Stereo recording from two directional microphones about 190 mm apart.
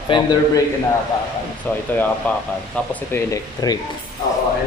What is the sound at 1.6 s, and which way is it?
Speech, 10° left (ahead or behind).